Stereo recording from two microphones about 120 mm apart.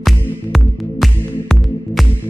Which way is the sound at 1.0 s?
Centre (ahead or behind).